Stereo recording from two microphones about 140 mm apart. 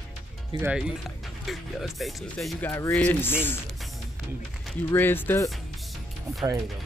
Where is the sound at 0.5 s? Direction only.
40° right (ahead or behind).